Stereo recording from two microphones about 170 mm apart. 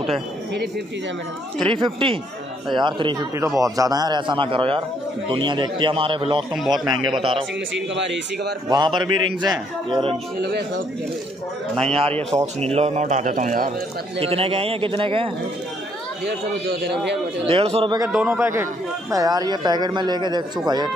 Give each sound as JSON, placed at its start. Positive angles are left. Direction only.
{"t": 1.6, "sound": "a man's voice", "side_deg": -30}
{"t": 6.5, "sound": "a man's voice", "side_deg": 0}
{"t": 6.9, "sound": "a man's voice", "side_deg": -30}
{"t": 7.7, "sound": "a man's voice", "side_deg": -90}
{"t": 8.6, "sound": "a man's voice", "side_deg": -25}
{"t": 11.9, "sound": "a man's voice", "side_deg": -35}
{"t": 14.2, "sound": "a man's voice", "side_deg": -35}
{"t": 17.5, "sound": "a man's voice", "side_deg": -35}
{"t": 18.1, "sound": "a man's voice", "side_deg": -10}